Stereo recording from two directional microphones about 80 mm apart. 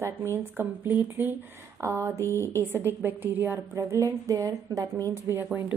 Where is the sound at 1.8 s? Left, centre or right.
Right.